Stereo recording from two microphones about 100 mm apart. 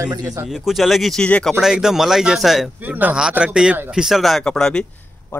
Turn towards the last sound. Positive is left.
turn(degrees=5)  # may be behind; listen again after turning